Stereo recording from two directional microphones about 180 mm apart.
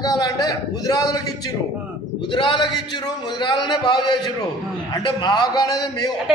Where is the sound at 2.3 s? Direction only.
25° left (ahead or behind).